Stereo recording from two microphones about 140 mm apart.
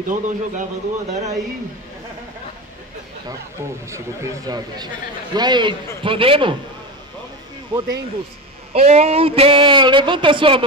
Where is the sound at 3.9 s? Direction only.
20° right (ahead or behind); by 6.5 s 40° right (ahead or behind).